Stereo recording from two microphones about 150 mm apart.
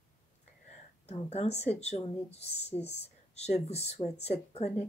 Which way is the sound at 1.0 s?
45° left (ahead or behind).